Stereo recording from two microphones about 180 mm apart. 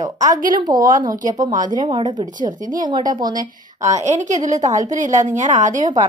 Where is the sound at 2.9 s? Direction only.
25° right (ahead or behind).